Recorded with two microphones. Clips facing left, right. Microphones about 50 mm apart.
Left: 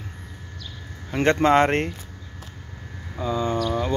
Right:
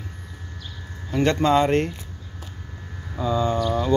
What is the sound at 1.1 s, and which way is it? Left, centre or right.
Speech, left.